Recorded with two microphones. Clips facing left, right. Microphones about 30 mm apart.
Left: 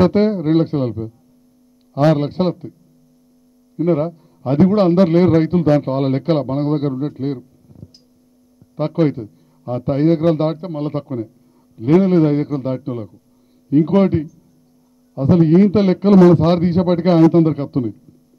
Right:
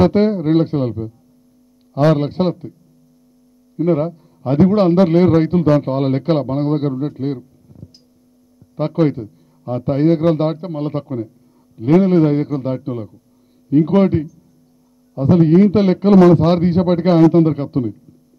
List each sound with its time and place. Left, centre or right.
0.0 s a man's voice: centre
2.1 s a man's voice: centre
3.7 s a man's voice: centre